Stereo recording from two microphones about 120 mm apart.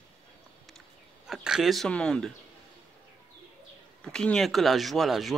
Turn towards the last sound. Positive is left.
turn(degrees=0)  # may be behind; listen again after turning